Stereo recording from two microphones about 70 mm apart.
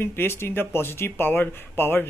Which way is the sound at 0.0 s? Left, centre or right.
Left.